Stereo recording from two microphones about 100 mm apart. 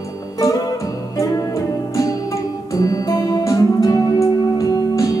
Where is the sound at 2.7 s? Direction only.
40° left (ahead or behind).